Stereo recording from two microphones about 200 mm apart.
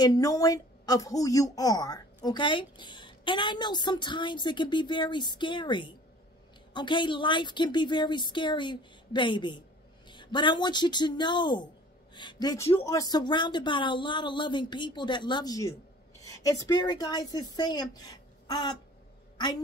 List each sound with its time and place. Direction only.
0.0 s speech: 20° left (ahead or behind)